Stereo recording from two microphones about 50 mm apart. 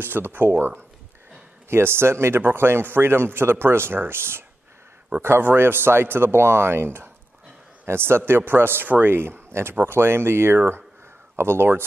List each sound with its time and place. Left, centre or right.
0.0 s a man's voice: right
8.8 s speech: right
9.1 s a man's voice: right